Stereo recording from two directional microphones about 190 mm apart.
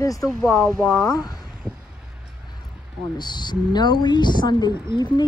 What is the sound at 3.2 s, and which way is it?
A woman's voice, 25° left (ahead or behind).